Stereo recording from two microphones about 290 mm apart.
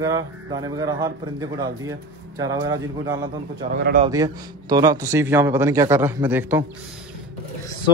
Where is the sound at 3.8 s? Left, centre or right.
Right.